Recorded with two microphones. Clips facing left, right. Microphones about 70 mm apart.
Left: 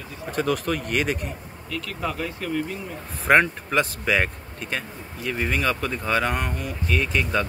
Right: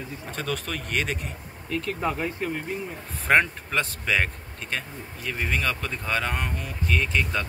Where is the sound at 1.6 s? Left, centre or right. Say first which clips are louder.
Right 2 dB; right.